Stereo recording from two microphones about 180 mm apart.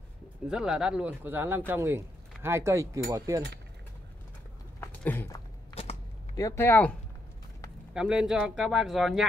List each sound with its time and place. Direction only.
0.5 s speech: 5° right (ahead or behind); by 3.4 s 20° right (ahead or behind)
4.7 s a sound: 10° left (ahead or behind)
6.3 s speech: 15° left (ahead or behind)
7.9 s speech: 5° right (ahead or behind)